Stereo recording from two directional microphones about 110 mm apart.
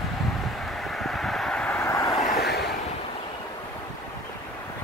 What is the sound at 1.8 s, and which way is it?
Vehicle, 30° left (ahead or behind).